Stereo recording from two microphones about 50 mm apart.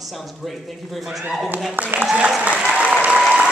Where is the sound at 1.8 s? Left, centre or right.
Right.